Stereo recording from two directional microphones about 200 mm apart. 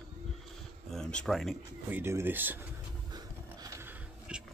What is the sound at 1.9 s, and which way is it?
Speech, 10° right (ahead or behind).